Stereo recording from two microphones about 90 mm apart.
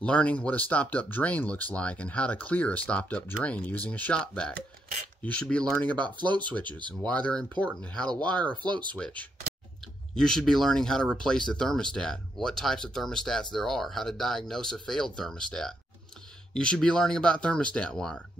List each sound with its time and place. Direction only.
0.0 s speech: 15° left (ahead or behind)
5.9 s speech: 60° right (ahead or behind)
7.0 s speech: 15° left (ahead or behind)
8.6 s speech: 60° right (ahead or behind)
8.9 s speech: 15° left (ahead or behind)